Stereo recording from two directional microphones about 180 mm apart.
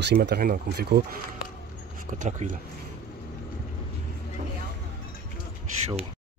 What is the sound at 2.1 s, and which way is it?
Speech, 45° right (ahead or behind).